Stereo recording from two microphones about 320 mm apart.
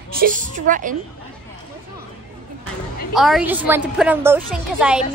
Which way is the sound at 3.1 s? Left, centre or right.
Centre.